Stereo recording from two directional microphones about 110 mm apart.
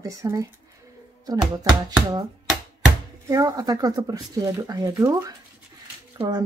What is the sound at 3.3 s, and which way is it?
Speech, 30° right (ahead or behind).